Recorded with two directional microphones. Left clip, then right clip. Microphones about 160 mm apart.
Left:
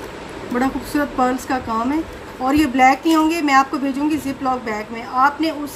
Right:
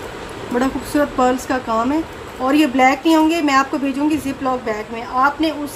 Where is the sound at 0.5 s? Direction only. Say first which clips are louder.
Right 2 dB; centre (ahead or behind).